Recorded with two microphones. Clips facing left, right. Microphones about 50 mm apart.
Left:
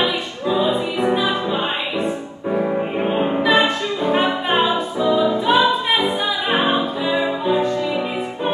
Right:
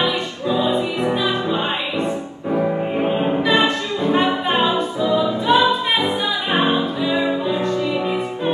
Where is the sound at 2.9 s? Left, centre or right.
Left.